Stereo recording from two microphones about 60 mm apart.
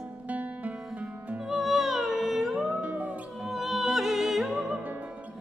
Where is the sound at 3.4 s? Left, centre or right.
Centre.